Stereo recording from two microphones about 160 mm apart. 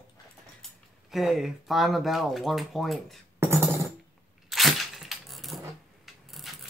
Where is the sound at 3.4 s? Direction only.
20° right (ahead or behind).